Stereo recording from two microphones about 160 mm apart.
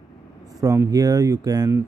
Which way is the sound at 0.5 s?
20° right (ahead or behind).